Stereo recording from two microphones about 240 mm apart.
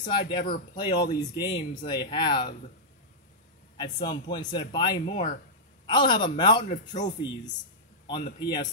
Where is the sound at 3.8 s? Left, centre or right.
Centre.